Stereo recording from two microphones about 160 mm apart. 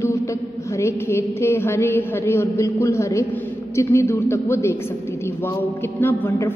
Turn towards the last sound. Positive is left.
turn(degrees=15)  # may be behind; listen again after turning